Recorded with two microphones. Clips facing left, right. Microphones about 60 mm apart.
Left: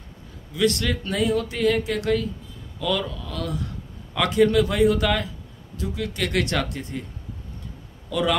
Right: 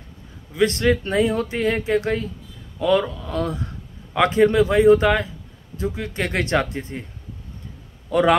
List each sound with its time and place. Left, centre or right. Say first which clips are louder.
0.6 s speech: right 4 dB; right
8.1 s a man's voice: right 6 dB; right